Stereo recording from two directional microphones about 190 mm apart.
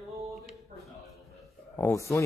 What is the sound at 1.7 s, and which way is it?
Speech, 15° left (ahead or behind).